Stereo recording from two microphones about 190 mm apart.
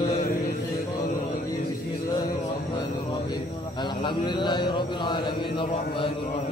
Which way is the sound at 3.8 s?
25° left (ahead or behind).